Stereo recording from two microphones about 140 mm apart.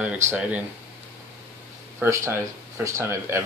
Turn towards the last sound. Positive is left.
turn(degrees=-15)  # may be behind; listen again after turning